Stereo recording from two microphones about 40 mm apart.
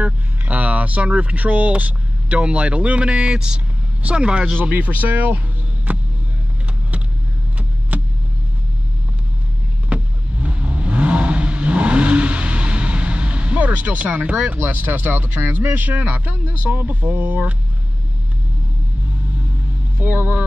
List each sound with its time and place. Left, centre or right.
0.0 s speech: right
4.6 s speech: right
5.9 s music: right
7.9 s vehicle: right
9.8 s vehicle: right
14.6 s speech: right
15.9 s speech: right
20.0 s speech: right